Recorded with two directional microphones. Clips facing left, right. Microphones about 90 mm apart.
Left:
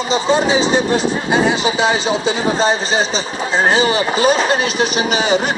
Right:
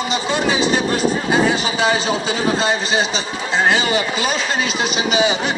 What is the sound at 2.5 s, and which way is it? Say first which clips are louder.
A man's voice: left 2 dB; 30° left (ahead or behind).